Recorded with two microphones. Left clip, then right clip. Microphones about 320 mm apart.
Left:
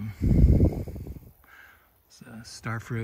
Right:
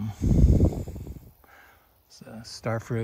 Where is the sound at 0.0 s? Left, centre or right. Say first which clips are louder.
Right 1 dB; centre.